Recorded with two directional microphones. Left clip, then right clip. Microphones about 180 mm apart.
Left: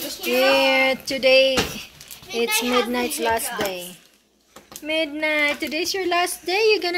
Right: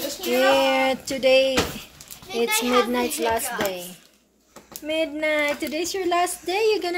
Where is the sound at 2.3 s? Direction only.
Centre (ahead or behind).